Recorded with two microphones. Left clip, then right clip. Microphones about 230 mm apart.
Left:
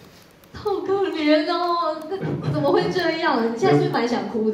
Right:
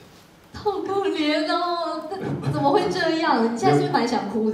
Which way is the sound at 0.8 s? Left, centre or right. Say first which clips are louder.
Left 4 dB; right.